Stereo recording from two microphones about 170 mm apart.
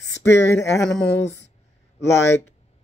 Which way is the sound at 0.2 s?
15° left (ahead or behind).